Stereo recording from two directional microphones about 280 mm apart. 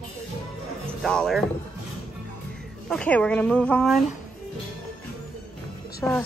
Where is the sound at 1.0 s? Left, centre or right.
Centre.